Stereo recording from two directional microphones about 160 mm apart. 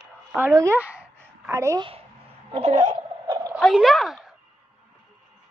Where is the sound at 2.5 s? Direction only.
30° right (ahead or behind).